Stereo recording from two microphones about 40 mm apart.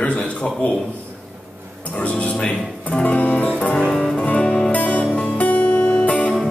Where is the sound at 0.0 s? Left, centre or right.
Left.